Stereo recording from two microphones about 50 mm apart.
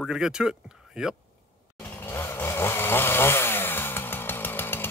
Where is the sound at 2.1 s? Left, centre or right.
Left.